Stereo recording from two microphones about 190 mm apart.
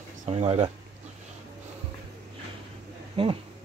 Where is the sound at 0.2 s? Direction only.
35° right (ahead or behind).